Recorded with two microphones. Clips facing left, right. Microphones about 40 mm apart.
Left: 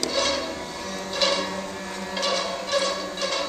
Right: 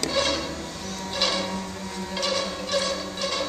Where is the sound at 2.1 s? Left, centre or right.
Centre.